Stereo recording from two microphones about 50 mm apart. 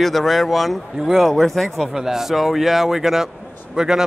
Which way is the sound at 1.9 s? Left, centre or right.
Centre.